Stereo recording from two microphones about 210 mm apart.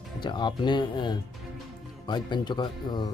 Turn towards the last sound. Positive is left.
turn(degrees=20)  # may be behind; listen again after turning